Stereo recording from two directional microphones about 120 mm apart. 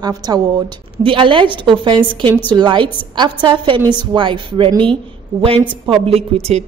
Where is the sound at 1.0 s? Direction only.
45° right (ahead or behind).